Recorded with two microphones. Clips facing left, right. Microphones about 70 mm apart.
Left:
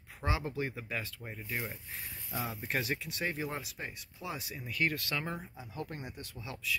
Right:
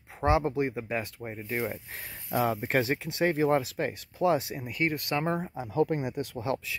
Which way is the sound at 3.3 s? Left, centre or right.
Right.